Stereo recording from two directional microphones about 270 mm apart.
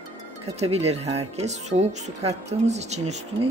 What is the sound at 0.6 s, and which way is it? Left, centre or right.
Speech, right.